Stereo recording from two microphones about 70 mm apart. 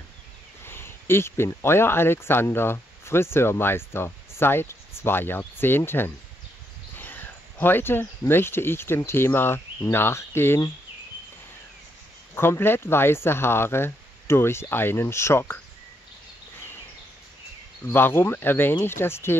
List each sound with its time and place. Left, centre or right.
0.7 s speech: left
7.0 s a sound: left
8.3 s speech: left
12.4 s speech: left
17.8 s speech: left